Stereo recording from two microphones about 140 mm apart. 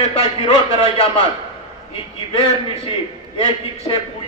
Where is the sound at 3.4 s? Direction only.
40° left (ahead or behind).